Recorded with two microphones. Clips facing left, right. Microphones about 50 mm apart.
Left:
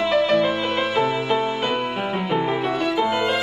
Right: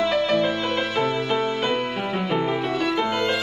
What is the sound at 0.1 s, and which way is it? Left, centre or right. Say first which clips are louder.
Music: left 3 dB; centre.